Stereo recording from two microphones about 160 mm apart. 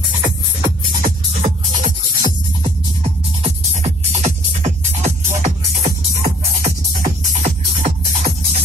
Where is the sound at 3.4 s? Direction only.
45° right (ahead or behind).